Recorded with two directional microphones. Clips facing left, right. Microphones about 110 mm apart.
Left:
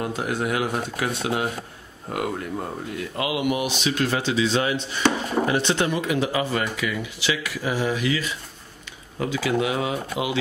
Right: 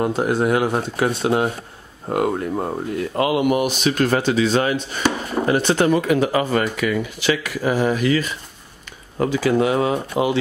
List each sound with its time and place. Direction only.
0.0 s speech: 35° right (ahead or behind)